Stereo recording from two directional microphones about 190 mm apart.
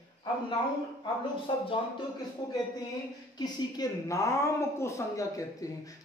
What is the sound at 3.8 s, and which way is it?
A man's voice, 15° left (ahead or behind).